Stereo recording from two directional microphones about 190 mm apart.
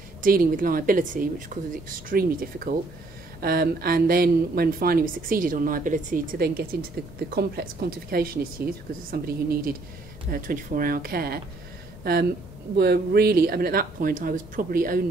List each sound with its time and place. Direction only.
0.2 s a woman's voice: 45° right (ahead or behind)